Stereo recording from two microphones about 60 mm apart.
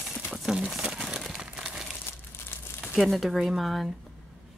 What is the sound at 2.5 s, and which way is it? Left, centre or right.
Crumpling, left.